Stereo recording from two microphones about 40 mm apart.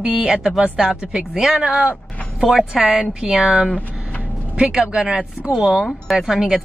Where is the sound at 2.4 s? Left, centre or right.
Centre.